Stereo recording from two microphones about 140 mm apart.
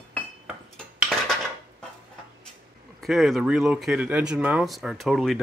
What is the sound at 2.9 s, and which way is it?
Speech, centre (ahead or behind).